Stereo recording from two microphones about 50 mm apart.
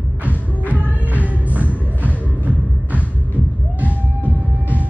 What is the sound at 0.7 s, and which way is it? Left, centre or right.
Music, right.